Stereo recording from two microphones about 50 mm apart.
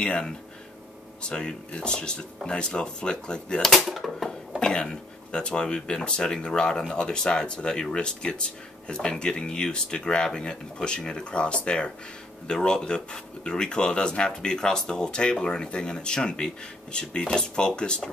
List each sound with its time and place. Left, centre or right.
1.3 s speech: centre
3.6 s speech: centre
4.3 s speech: centre